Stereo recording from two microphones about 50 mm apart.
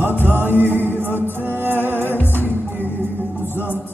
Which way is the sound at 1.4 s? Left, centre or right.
Right.